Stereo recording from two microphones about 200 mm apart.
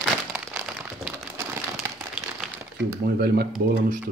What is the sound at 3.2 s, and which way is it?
Speech, 50° right (ahead or behind).